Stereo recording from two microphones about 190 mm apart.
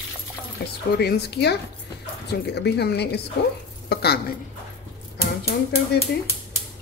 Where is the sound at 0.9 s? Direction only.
60° left (ahead or behind).